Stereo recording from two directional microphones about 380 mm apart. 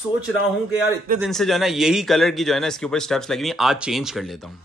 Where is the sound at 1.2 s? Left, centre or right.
Centre.